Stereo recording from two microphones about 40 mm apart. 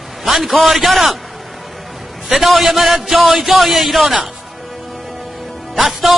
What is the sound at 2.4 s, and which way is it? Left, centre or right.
A man's voice, centre.